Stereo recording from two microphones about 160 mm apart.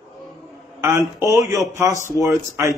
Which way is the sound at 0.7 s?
20° right (ahead or behind).